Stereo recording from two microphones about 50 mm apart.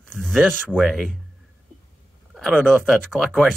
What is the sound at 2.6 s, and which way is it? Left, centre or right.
Speech, centre.